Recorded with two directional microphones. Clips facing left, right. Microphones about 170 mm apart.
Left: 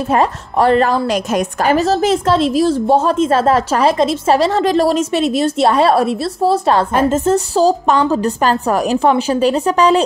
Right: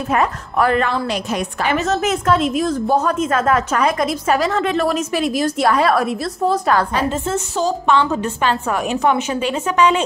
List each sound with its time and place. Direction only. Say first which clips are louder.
0.1 s a woman's voice: left 3 dB; 30° left (ahead or behind)
6.9 s a woman's voice: left 7 dB; 45° left (ahead or behind)